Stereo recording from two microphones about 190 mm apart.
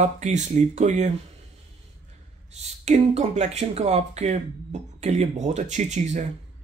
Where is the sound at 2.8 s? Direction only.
35° right (ahead or behind).